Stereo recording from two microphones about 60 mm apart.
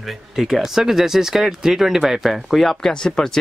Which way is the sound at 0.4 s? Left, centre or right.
Centre.